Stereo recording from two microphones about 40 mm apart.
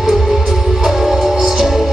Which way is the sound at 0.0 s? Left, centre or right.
Centre.